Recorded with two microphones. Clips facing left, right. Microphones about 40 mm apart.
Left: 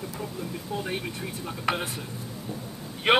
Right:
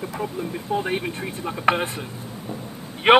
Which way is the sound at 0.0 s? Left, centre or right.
Right.